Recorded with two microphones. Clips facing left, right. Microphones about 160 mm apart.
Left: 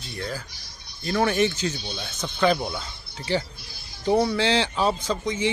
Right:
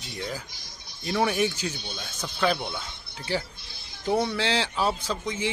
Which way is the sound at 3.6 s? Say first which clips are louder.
Left 2 dB; 25° right (ahead or behind).